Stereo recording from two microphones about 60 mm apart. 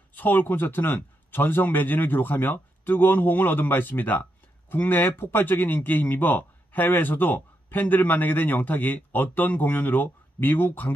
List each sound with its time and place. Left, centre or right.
0.1 s speech: left